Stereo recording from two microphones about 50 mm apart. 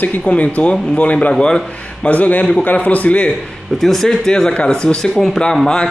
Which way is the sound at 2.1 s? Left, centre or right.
Left.